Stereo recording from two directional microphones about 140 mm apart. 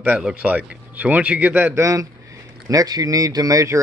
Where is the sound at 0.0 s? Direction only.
10° right (ahead or behind).